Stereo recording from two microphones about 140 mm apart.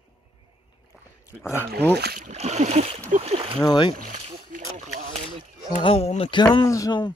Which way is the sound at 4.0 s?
65° right (ahead or behind).